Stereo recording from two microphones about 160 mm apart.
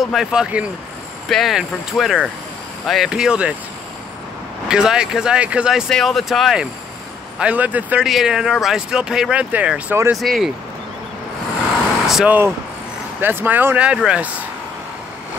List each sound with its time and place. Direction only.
0.0 s speech: centre (ahead or behind)
4.6 s speech: 5° right (ahead or behind)
10.2 s speech: centre (ahead or behind)
12.1 s speech: 5° right (ahead or behind)